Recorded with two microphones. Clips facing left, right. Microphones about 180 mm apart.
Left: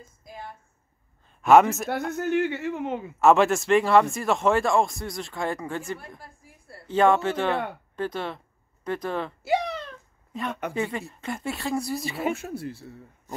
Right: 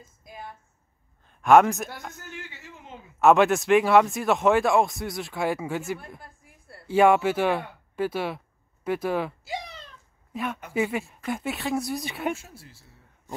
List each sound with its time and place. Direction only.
0.2 s speech: centre (ahead or behind)
2.1 s speech: 65° left (ahead or behind)
3.2 s speech: centre (ahead or behind)
9.4 s a sound: 65° left (ahead or behind)
10.3 s speech: 5° right (ahead or behind)
12.4 s speech: 60° left (ahead or behind)